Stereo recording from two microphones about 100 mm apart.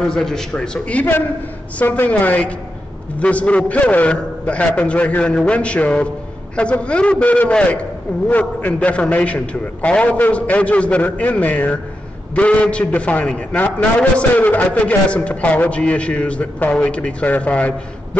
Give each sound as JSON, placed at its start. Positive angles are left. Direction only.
{"t": 0.1, "sound": "a man's voice", "side_deg": 5}